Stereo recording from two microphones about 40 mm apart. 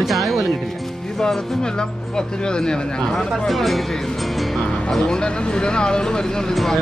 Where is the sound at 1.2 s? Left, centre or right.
Centre.